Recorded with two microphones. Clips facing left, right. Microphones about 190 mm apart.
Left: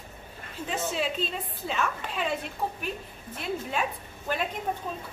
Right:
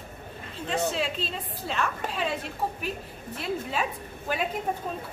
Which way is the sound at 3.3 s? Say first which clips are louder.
Right 1 dB; centre (ahead or behind).